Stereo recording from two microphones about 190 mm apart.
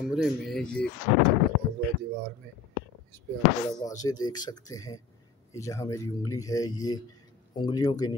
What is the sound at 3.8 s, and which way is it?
Speech, 20° left (ahead or behind).